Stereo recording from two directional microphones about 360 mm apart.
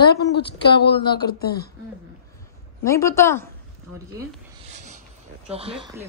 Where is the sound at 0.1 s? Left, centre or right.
Left.